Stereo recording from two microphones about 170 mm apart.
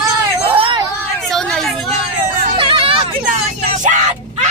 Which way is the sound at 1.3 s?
Centre (ahead or behind).